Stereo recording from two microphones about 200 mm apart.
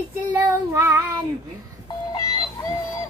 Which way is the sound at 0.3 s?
10° right (ahead or behind).